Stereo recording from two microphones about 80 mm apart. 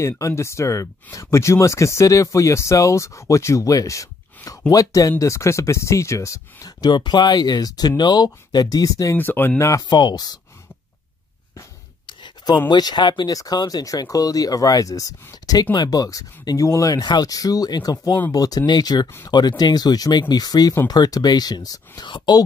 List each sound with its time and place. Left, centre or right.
0.2 s speech: left
6.8 s speech: left
9.1 s speech: left
9.6 s speech: left
9.8 s speech: left
12.1 s a sound: left
12.6 s speech: left
13.3 s speech: left
22.0 s speech: left